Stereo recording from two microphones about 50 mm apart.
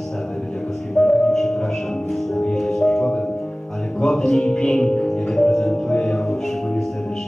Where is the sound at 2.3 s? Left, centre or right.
Centre.